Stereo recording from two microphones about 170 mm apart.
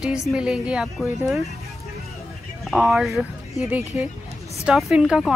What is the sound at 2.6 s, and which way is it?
A woman's voice, centre (ahead or behind).